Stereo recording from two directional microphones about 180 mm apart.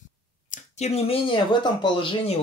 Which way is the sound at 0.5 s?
40° left (ahead or behind).